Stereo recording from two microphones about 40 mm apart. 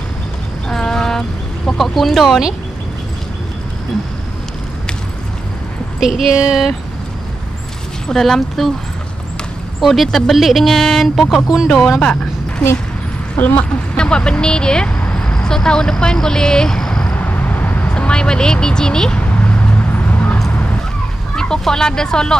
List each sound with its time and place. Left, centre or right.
0.7 s a sound: centre
1.8 s speech: centre
5.9 s speech: centre
8.1 s speech: centre
9.8 s speech: centre
12.0 s speech: left
13.9 s speech: left
17.2 s vehicle: left; by 19.1 s centre
19.1 s a sound: left
21.4 s speech: centre